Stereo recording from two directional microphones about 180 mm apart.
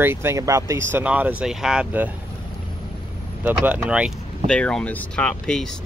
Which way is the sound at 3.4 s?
10° right (ahead or behind).